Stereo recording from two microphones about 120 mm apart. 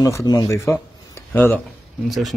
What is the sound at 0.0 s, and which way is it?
Speech, 30° left (ahead or behind).